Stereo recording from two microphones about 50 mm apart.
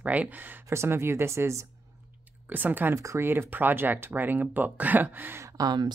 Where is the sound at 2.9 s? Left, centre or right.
Right.